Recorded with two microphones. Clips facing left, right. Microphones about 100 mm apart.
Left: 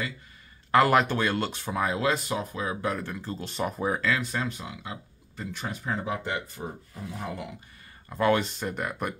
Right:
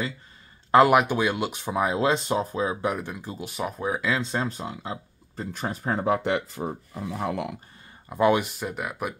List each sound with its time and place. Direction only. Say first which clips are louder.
0.7 s speech: right 4 dB; 20° right (ahead or behind); by 4.0 s centre (ahead or behind)
4.0 s speech: right 2 dB; 20° right (ahead or behind); by 5.9 s 40° right (ahead or behind)
5.9 s speech: right 7 dB; 60° right (ahead or behind)
8.1 s speech: right 3 dB; 15° right (ahead or behind)